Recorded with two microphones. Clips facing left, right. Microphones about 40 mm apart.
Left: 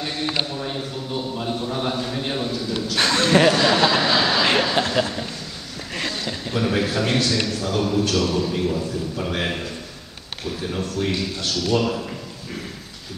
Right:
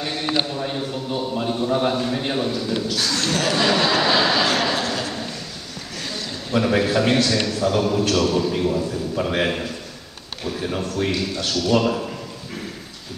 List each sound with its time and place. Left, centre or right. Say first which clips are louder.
0.6 s a man's voice: right 2 dB; centre
2.9 s speech: left 5 dB; left
3.5 s speech: left 1 dB; centre
4.0 s vehicle: right 1 dB; centre
4.4 s a sound: left 1 dB; left
6.5 s a man's voice: right 4 dB; centre